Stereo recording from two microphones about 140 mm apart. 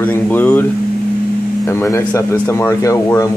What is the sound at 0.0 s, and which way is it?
Speech, 15° left (ahead or behind).